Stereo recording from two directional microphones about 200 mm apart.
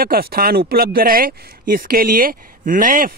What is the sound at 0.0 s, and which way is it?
Speech, 50° right (ahead or behind).